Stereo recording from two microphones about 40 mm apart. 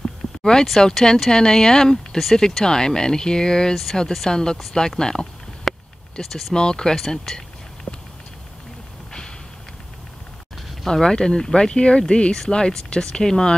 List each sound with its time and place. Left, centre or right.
0.4 s speech: centre
3.7 s speech: centre
5.7 s a sound: centre
6.2 s speech: left
10.9 s speech: centre